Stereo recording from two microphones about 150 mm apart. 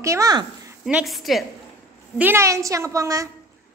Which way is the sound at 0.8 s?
5° right (ahead or behind).